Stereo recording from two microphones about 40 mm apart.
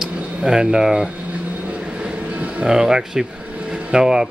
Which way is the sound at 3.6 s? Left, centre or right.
Right.